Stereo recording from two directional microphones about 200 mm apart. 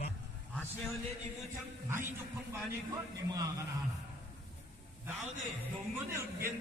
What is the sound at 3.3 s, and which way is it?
Speech, 15° right (ahead or behind).